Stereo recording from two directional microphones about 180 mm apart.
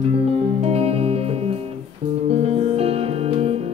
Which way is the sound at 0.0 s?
35° right (ahead or behind).